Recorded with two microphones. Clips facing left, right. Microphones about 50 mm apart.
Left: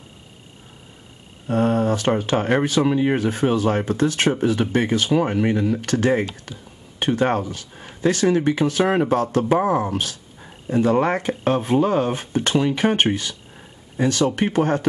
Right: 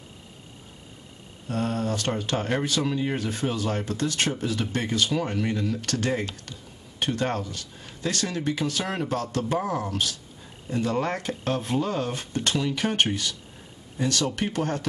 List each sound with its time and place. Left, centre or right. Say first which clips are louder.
1.5 s speech: left 8 dB; left